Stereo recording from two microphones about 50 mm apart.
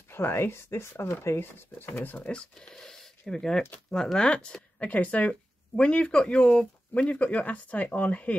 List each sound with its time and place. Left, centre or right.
0.1 s speech: left
2.3 s speech: centre; by 8.4 s left